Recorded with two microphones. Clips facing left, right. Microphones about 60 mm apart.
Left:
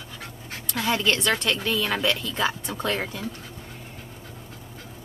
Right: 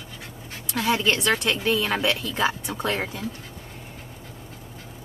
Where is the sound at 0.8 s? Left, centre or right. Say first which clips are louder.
Right 1 dB; centre.